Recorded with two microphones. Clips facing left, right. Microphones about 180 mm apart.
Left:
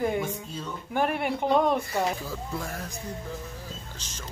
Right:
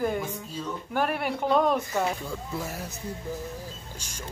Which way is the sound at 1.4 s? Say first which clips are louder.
Even; 20° left (ahead or behind).